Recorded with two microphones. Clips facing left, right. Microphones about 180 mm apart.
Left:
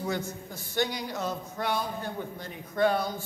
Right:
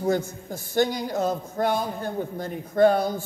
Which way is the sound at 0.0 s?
45° right (ahead or behind).